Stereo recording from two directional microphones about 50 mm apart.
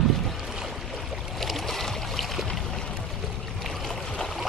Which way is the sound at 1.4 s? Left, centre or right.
Centre.